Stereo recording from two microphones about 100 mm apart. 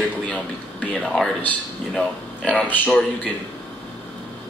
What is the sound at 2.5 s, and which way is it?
Speech, 15° left (ahead or behind).